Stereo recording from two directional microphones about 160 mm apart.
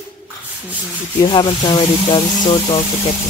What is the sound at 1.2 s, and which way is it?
Speech, 30° left (ahead or behind).